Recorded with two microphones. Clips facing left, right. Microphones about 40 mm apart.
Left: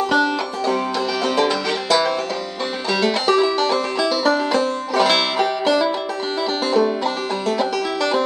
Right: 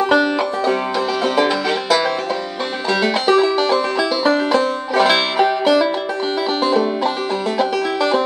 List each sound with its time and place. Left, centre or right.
0.0 s music: right